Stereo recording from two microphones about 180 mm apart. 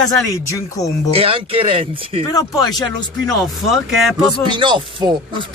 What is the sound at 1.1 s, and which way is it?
Speech, 30° right (ahead or behind).